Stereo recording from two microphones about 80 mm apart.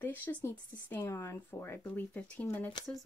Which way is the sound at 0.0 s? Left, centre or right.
Left.